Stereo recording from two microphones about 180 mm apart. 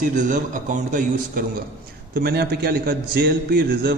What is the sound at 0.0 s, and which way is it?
A man's voice, 45° right (ahead or behind).